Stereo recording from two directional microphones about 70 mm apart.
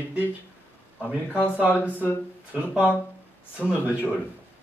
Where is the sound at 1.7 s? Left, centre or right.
Left.